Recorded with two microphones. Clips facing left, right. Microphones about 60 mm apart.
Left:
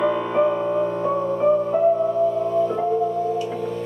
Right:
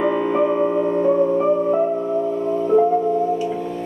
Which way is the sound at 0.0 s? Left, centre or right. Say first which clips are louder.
Right 2 dB; right.